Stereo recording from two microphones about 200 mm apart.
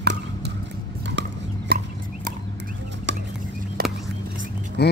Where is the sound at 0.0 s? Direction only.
55° right (ahead or behind).